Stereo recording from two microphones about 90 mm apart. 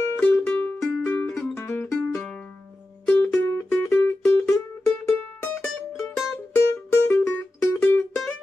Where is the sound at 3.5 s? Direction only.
25° left (ahead or behind).